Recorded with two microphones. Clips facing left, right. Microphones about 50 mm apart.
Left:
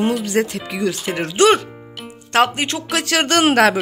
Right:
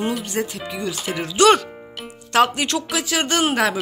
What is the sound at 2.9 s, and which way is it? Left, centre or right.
Speech, left.